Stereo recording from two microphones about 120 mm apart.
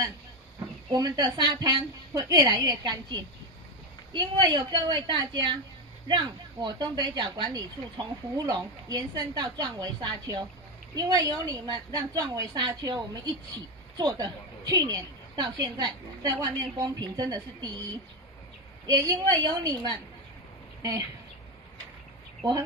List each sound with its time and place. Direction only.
0.9 s a woman's voice: 35° right (ahead or behind)
18.9 s a woman's voice: 35° right (ahead or behind)